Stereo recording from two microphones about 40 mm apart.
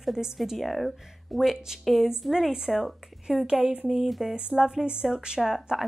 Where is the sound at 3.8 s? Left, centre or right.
Centre.